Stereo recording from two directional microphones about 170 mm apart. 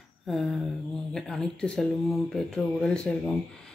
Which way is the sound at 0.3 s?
Centre (ahead or behind).